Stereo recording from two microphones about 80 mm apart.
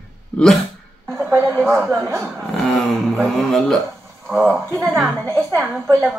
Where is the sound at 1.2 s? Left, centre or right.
Right.